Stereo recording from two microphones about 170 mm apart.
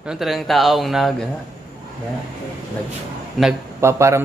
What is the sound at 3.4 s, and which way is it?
Speech, centre (ahead or behind).